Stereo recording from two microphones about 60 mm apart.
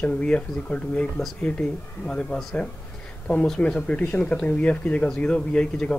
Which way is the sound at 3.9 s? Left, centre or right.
Left.